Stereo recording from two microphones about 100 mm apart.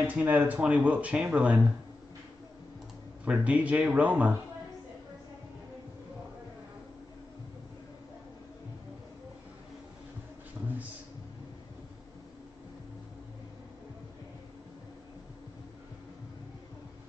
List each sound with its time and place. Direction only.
0.0 s speech: 15° right (ahead or behind)
3.3 s speech: 15° right (ahead or behind)